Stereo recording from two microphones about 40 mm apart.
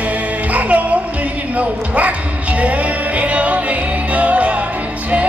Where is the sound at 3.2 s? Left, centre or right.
Right.